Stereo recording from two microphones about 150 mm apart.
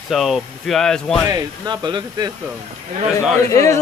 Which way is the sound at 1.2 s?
25° right (ahead or behind).